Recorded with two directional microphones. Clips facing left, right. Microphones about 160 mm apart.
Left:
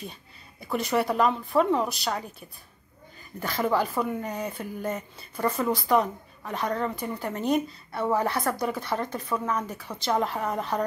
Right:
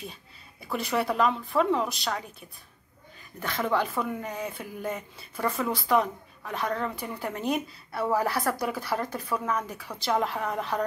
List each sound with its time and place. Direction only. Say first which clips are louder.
0.0 s speech: left 1 dB; centre (ahead or behind)
3.3 s speech: left 2 dB; 5° left (ahead or behind)